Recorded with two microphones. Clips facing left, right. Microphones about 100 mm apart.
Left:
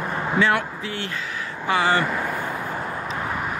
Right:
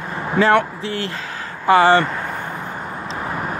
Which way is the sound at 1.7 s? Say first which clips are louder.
Right 8 dB; 40° right (ahead or behind).